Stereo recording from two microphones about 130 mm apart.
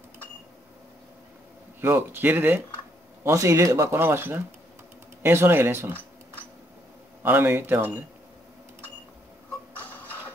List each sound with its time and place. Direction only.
1.8 s speech: 15° right (ahead or behind)
7.2 s speech: 15° right (ahead or behind)